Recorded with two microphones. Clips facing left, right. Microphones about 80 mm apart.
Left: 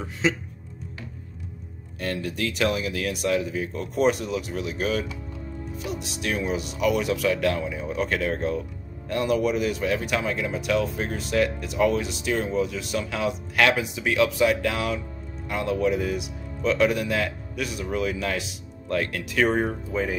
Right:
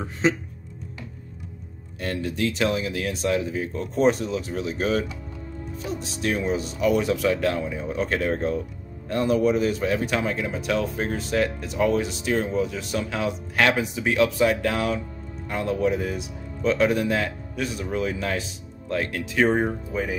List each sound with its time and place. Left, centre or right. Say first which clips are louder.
0.2 s speech: right 2 dB; right
2.1 s speech: right 3 dB; right
19.6 s speech: even; centre